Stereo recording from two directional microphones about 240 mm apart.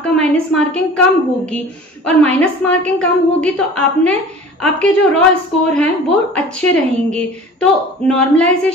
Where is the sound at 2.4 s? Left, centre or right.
Centre.